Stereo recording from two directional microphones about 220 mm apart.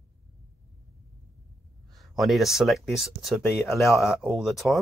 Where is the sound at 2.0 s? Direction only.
Centre (ahead or behind).